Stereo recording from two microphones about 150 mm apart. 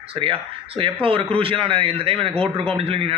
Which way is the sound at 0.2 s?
35° right (ahead or behind).